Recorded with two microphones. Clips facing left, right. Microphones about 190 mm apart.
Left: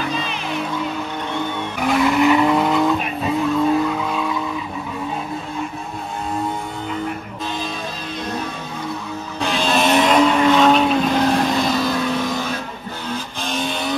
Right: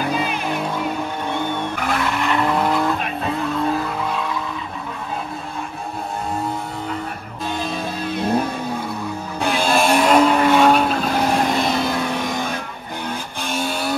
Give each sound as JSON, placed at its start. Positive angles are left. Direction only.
{"t": 0.1, "sound": "vehicle", "side_deg": -10}
{"t": 1.8, "sound": "vehicle", "side_deg": 5}
{"t": 8.1, "sound": "music", "side_deg": -55}
{"t": 9.6, "sound": "vehicle", "side_deg": -10}